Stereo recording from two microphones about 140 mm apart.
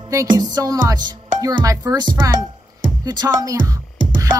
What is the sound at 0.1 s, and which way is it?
Speech, 25° right (ahead or behind).